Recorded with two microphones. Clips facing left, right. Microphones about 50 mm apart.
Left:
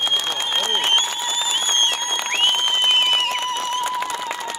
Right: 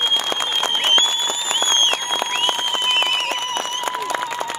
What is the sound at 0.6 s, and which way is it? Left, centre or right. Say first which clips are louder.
Applause: right 2 dB; right.